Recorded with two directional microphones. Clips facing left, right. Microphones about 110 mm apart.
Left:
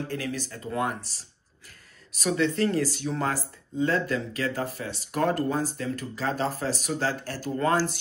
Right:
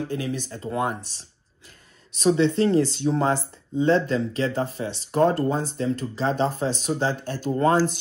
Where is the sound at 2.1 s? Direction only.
25° right (ahead or behind).